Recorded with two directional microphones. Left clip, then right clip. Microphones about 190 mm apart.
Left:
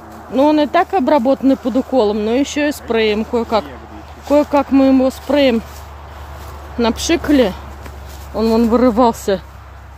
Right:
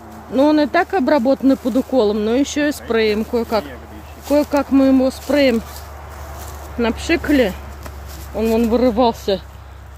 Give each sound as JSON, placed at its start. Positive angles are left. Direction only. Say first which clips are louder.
{"t": 0.3, "sound": "speech", "louder": "left 2 dB", "side_deg": 0}
{"t": 7.1, "sound": "speech", "louder": "left 2 dB", "side_deg": 15}